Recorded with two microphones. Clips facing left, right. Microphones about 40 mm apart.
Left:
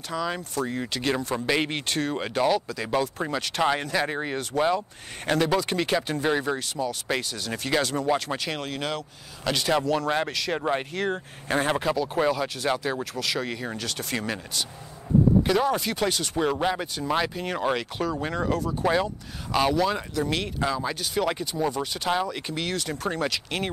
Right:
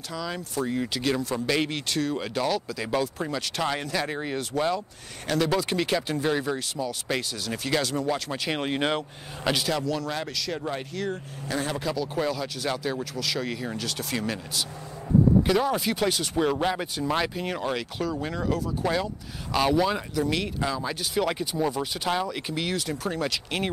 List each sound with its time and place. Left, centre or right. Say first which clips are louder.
0.1 s speech: left 4 dB; centre
0.7 s speech: right 3 dB; centre
1.1 s speech: left 2 dB; centre
8.5 s speech: right 4 dB; right
9.7 s speech: left 4 dB; left
11.8 s speech: left 3 dB; left; by 17.6 s centre
17.6 s speech: left 6 dB; centre
19.7 s speech: right 1 dB; centre
23.0 s speech: left 1 dB; centre